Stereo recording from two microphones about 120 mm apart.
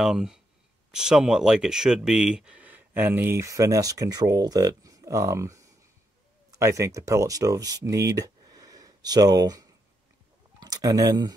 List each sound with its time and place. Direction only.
0.0 s speech: 5° right (ahead or behind); by 11.3 s 30° right (ahead or behind)